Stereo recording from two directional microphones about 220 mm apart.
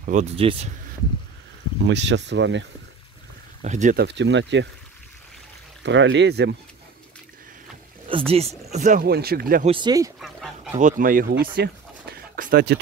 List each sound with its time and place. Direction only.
0.0 s speech: 35° right (ahead or behind)
1.9 s speech: 55° right (ahead or behind)
3.6 s speech: 35° right (ahead or behind)
4.0 s speech: 55° right (ahead or behind)
5.9 s speech: 55° right (ahead or behind)
8.3 s speech: 30° right (ahead or behind)
9.7 s speech: 20° right (ahead or behind)
10.2 s goose: centre (ahead or behind)
10.8 s speech: 35° right (ahead or behind)